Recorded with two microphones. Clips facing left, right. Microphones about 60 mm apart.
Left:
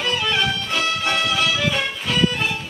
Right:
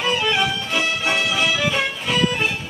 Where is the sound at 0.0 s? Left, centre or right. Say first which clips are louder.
Right 1 dB; centre.